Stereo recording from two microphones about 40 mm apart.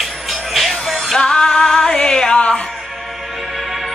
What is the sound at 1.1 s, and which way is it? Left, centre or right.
Music, centre.